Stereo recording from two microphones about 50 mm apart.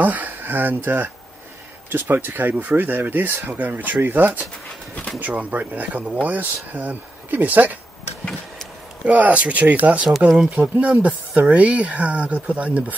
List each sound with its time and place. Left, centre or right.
0.0 s a sound: right
0.8 s speech: right
9.0 s speech: right